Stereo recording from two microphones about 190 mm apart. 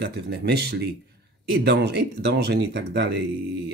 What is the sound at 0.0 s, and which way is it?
Speech, 60° right (ahead or behind).